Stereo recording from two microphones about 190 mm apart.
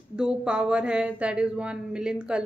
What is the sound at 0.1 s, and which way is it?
Speech, 5° right (ahead or behind).